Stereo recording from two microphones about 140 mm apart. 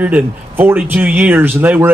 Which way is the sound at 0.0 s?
15° right (ahead or behind).